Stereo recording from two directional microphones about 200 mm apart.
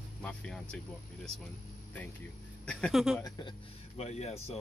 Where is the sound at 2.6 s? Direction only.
Centre (ahead or behind).